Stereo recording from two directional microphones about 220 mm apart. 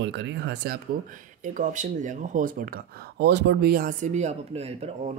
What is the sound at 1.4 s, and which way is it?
Speech, 35° right (ahead or behind).